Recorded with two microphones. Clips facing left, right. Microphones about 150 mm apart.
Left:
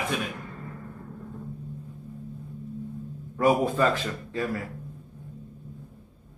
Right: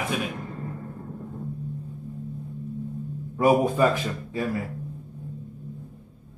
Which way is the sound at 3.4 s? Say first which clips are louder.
Right 2 dB; 15° right (ahead or behind).